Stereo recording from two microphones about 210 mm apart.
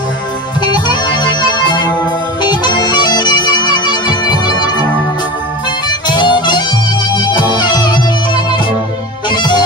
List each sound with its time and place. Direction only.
0.6 s music: 20° left (ahead or behind)
2.4 s bagpipes: 20° left (ahead or behind)
6.0 s music: 20° left (ahead or behind)